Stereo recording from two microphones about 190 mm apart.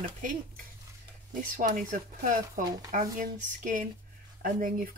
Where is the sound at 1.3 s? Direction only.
45° right (ahead or behind).